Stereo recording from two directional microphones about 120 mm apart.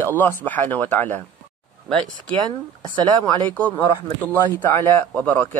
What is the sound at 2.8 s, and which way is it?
Speech, 40° right (ahead or behind).